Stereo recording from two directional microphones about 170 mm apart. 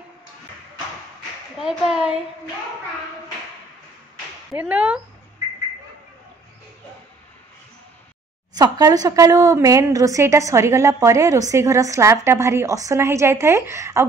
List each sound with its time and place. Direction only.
1.6 s speech: 5° right (ahead or behind)
4.6 s a woman's voice: 10° right (ahead or behind)
8.5 s a woman's voice: 20° right (ahead or behind)